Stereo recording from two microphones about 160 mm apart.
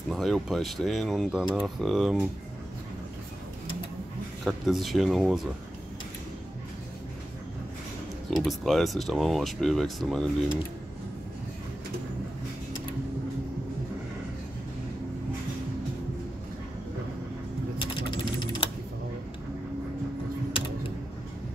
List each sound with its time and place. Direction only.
0.1 s speech: centre (ahead or behind)
4.5 s speech: centre (ahead or behind)
8.5 s speech: centre (ahead or behind)
17.7 s ratchet: 30° left (ahead or behind)